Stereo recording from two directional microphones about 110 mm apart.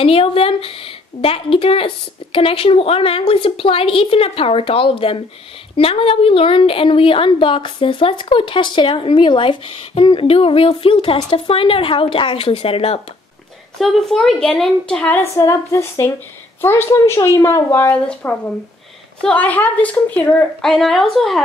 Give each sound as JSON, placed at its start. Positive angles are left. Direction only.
{"t": 0.0, "sound": "a woman's voice", "side_deg": 60}
{"t": 13.7, "sound": "a woman's voice", "side_deg": 0}
{"t": 15.3, "sound": "a woman's voice", "side_deg": 25}
{"t": 20.6, "sound": "a woman's voice", "side_deg": 0}